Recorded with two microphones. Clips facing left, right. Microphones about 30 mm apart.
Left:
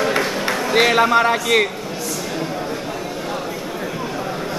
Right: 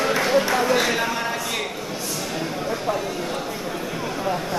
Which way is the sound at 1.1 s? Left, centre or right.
Left.